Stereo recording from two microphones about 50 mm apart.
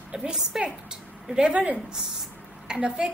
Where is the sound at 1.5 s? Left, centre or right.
Right.